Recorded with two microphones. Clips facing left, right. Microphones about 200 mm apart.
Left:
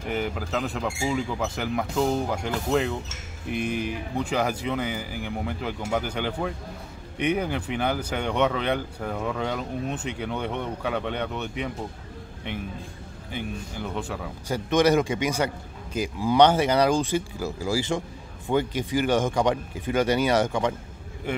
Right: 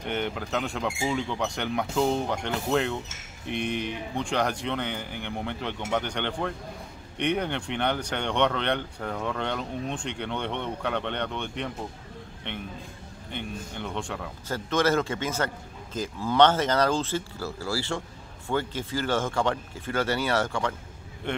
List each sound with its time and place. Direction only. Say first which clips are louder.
0.0 s speech: left 2 dB; centre (ahead or behind)
14.5 s a man's voice: left 4 dB; 15° left (ahead or behind)